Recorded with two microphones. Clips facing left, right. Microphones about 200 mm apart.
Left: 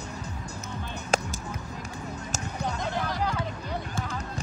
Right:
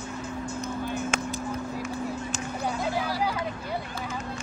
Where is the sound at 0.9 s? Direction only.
40° left (ahead or behind).